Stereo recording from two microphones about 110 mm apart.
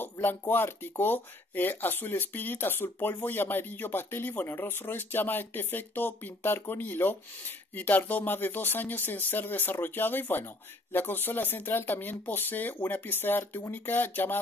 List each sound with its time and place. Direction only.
0.0 s speech: 20° left (ahead or behind)